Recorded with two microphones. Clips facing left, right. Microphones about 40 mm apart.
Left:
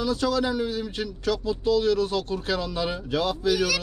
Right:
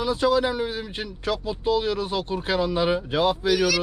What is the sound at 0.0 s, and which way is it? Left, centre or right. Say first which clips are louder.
Speech: right 3 dB; right.